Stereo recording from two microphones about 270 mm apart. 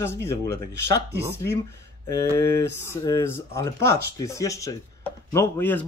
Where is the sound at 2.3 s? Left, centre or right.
Centre.